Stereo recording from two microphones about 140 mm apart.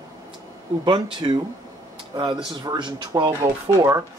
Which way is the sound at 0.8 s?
35° right (ahead or behind).